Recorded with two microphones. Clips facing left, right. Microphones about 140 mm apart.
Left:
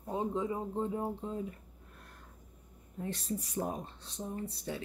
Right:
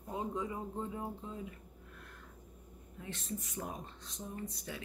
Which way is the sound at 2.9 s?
35° left (ahead or behind).